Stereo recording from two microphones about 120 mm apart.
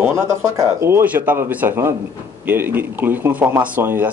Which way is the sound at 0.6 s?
20° right (ahead or behind).